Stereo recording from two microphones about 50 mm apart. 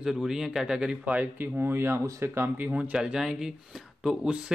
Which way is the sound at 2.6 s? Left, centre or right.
Right.